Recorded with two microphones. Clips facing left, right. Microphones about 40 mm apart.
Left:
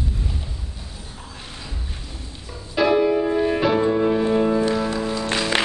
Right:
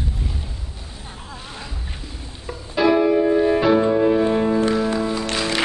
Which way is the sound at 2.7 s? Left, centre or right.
Centre.